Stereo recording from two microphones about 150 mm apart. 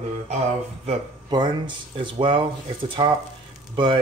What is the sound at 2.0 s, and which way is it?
Speech, 35° right (ahead or behind).